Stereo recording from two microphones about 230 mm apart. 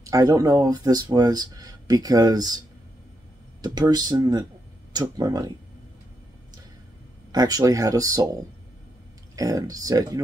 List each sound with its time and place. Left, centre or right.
0.0 s speech: centre
3.6 s speech: centre
7.3 s speech: centre
9.3 s speech: centre